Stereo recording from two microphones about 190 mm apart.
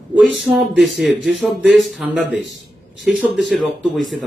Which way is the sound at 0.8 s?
Centre (ahead or behind).